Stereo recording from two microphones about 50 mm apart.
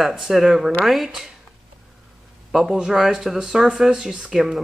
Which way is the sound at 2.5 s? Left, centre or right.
Centre.